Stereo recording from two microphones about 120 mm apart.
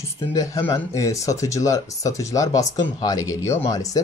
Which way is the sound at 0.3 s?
30° left (ahead or behind).